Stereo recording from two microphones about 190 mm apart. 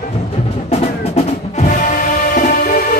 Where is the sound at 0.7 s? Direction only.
35° left (ahead or behind).